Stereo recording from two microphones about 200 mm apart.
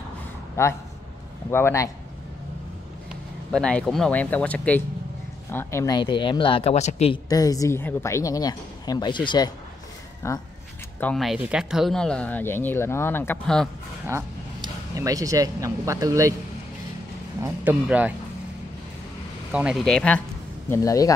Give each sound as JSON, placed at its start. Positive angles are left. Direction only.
{"t": 0.6, "sound": "speech", "side_deg": 15}
{"t": 3.5, "sound": "speech", "side_deg": 5}
{"t": 7.2, "sound": "speech", "side_deg": 20}
{"t": 11.0, "sound": "speech", "side_deg": 5}
{"t": 14.0, "sound": "speech", "side_deg": -15}
{"t": 17.4, "sound": "speech", "side_deg": -10}
{"t": 19.5, "sound": "speech", "side_deg": -5}
{"t": 20.7, "sound": "speech", "side_deg": 15}